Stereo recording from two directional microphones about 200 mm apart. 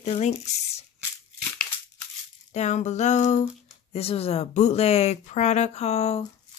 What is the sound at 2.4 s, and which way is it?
Speech, 35° left (ahead or behind).